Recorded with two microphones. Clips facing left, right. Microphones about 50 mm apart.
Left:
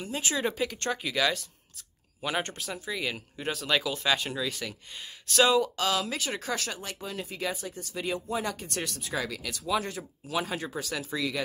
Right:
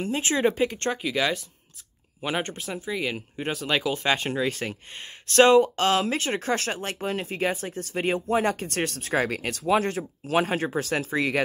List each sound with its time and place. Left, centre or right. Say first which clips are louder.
0.2 s speech: right 6 dB; right
0.5 s speech: right 5 dB; centre; by 6.6 s right
6.6 s speech: right 7 dB; right